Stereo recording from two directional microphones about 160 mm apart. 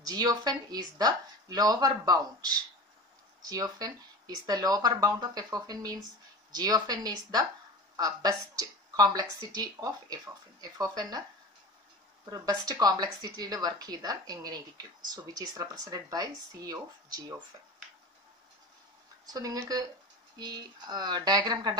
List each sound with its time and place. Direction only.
0.0 s a woman's voice: 25° right (ahead or behind)
3.4 s a woman's voice: 25° right (ahead or behind)
12.3 s a woman's voice: 25° right (ahead or behind)
19.2 s a woman's voice: 25° right (ahead or behind)